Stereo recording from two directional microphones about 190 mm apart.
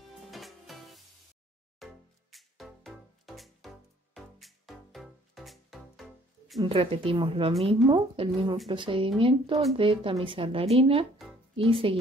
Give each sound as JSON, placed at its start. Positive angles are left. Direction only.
{"t": 0.2, "sound": "music", "side_deg": 0}
{"t": 6.6, "sound": "speech", "side_deg": -30}